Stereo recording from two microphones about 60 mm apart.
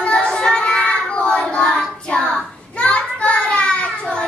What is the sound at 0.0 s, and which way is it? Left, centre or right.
Child singing, centre.